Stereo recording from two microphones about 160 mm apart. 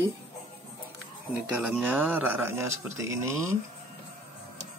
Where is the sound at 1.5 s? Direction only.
5° right (ahead or behind).